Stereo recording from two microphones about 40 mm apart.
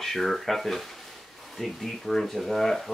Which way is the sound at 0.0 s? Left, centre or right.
Centre.